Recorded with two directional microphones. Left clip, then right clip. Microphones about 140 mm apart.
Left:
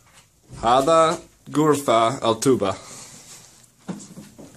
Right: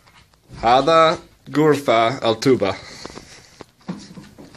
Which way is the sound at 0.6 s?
10° left (ahead or behind).